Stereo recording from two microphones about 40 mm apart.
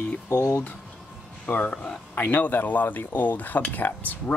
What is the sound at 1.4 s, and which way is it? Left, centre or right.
Speech, left.